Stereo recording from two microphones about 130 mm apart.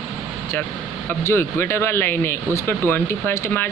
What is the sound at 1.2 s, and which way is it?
Speech, 20° left (ahead or behind).